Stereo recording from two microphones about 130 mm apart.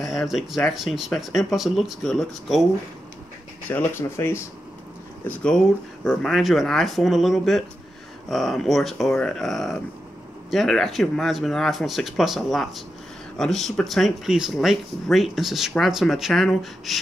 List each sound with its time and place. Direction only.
0.0 s speech: centre (ahead or behind)
3.7 s speech: 20° left (ahead or behind)
5.2 s speech: 5° left (ahead or behind)